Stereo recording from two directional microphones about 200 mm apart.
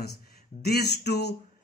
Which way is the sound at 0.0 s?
50° left (ahead or behind).